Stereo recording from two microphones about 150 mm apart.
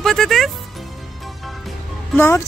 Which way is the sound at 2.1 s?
15° left (ahead or behind).